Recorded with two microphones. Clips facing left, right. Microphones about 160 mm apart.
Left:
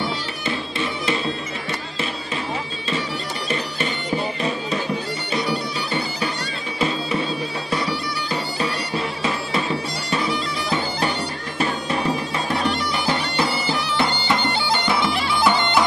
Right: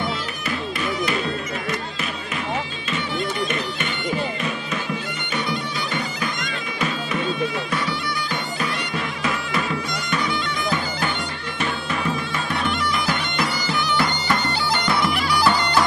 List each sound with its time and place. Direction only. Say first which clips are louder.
0.0 s music: left 1 dB; 30° left (ahead or behind)
4.4 s music: left 3 dB; 35° left (ahead or behind)
5.3 s bagpipes: left 2 dB; 35° left (ahead or behind)